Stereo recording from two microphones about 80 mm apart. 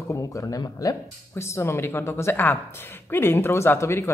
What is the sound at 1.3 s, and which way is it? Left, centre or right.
A woman's voice, left.